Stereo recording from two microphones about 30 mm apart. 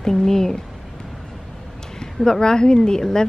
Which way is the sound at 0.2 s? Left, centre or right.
Centre.